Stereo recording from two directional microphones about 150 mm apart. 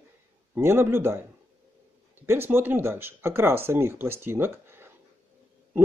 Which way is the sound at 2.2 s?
15° right (ahead or behind).